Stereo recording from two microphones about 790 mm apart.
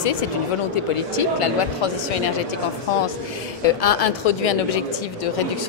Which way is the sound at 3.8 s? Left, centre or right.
Left.